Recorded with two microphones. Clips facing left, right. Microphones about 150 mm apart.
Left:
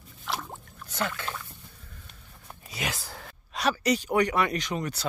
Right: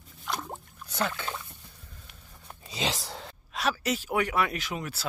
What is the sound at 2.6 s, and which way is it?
Speech, 25° right (ahead or behind).